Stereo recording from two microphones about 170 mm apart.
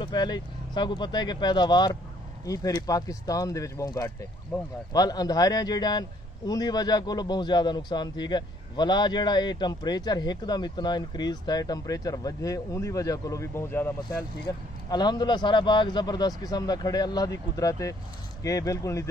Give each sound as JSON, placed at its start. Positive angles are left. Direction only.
{"t": 0.0, "sound": "a man's voice", "side_deg": 25}
{"t": 14.9, "sound": "a man's voice", "side_deg": 25}